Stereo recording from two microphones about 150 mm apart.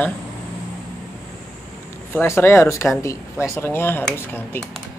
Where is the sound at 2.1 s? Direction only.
15° left (ahead or behind).